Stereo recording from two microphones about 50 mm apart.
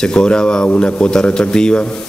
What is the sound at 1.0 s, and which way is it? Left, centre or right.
Speech, centre.